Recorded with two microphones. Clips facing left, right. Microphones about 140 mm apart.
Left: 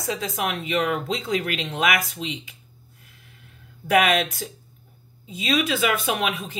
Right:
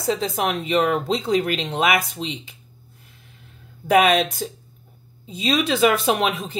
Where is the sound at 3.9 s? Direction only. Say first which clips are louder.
Right 3 dB; 30° right (ahead or behind).